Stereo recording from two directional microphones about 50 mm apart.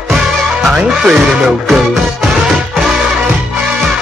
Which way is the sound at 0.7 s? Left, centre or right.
Centre.